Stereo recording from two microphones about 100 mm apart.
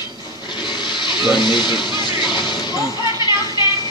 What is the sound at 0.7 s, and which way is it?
Vehicle, 50° left (ahead or behind).